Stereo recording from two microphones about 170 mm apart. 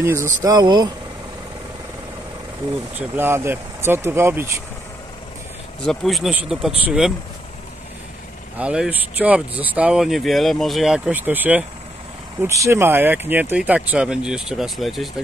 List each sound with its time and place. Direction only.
0.0 s speech: 15° right (ahead or behind)
3.0 s speech: 15° right (ahead or behind)
5.9 s speech: centre (ahead or behind)
8.5 s speech: 5° right (ahead or behind)